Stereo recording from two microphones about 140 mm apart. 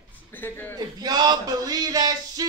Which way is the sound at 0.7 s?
30° right (ahead or behind).